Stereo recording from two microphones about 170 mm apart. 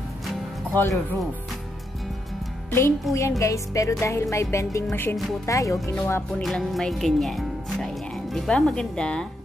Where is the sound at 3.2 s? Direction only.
20° left (ahead or behind).